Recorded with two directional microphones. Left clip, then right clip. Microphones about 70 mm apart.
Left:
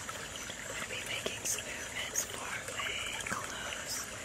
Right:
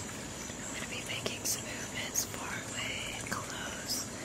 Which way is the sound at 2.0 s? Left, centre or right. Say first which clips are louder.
Right 1 dB; centre.